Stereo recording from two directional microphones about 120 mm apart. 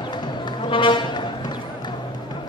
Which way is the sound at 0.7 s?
45° left (ahead or behind).